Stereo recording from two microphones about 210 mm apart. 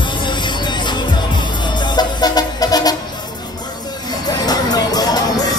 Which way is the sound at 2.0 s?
20° left (ahead or behind).